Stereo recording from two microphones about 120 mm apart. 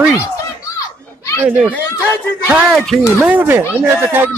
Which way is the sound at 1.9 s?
25° left (ahead or behind).